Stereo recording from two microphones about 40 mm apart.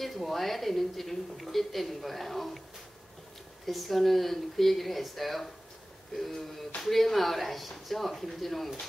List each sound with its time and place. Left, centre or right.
0.0 s a woman's voice: centre
3.6 s a woman's voice: centre